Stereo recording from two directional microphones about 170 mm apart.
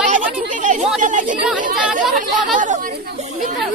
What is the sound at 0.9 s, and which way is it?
Speech, 50° right (ahead or behind).